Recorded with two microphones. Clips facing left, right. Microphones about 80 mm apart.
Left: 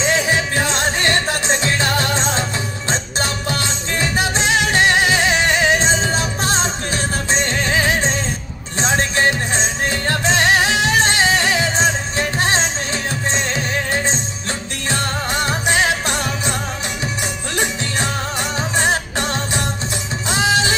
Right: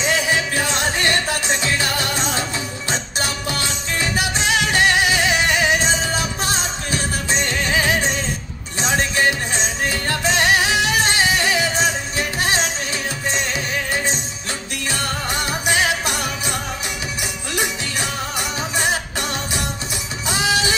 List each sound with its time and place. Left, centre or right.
0.0 s music: left
17.6 s music: left